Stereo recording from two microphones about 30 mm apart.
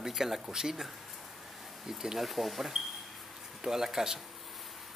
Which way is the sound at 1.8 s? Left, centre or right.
Centre.